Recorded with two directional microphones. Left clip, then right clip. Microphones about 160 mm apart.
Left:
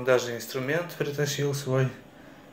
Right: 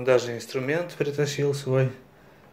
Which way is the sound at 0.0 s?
45° right (ahead or behind).